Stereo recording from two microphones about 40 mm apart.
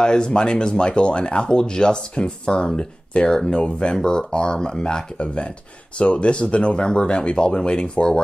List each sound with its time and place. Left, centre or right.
0.0 s speech: left